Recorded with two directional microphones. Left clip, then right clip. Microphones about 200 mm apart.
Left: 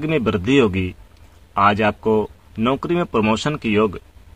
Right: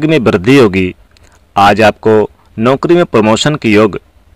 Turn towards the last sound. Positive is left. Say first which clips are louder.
# right 10 dB
turn(degrees=-40)  # may be behind; listen again after turning